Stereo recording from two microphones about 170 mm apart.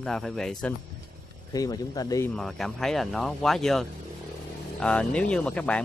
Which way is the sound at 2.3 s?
Centre (ahead or behind).